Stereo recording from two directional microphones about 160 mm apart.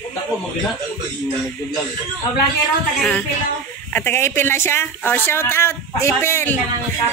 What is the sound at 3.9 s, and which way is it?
Speech, 15° left (ahead or behind).